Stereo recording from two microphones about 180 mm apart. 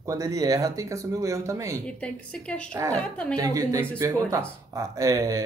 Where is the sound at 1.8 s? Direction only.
5° left (ahead or behind).